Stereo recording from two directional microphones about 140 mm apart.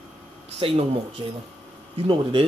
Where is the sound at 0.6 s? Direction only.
40° right (ahead or behind).